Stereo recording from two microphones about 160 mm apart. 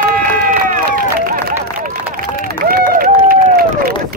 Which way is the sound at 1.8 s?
65° right (ahead or behind).